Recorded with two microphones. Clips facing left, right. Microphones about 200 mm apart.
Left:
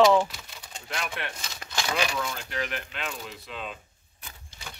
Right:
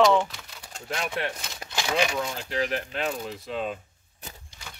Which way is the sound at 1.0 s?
35° right (ahead or behind).